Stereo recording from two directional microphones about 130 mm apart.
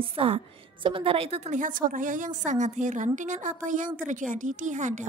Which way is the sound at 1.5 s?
85° right.